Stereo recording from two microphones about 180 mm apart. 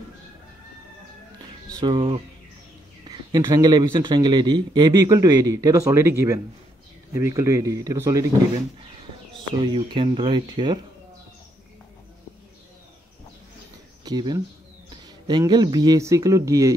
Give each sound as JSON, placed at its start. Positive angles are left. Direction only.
{"t": 1.8, "sound": "speech", "side_deg": -25}
{"t": 9.6, "sound": "speech", "side_deg": -30}
{"t": 14.0, "sound": "speech", "side_deg": -20}